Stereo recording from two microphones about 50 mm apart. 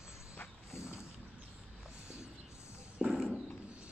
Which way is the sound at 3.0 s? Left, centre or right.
Centre.